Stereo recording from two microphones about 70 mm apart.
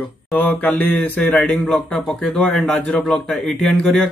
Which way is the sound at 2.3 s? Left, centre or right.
Centre.